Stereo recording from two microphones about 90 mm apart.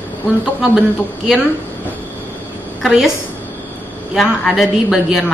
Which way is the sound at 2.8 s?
5° right (ahead or behind).